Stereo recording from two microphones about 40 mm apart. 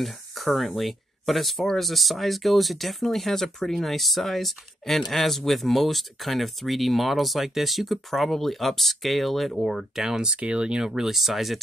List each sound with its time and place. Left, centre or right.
0.0 s speech: centre
9.9 s speech: centre
10.3 s speech: right
10.9 s speech: centre